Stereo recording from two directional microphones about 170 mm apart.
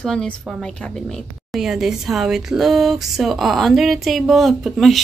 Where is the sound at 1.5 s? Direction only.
Centre (ahead or behind).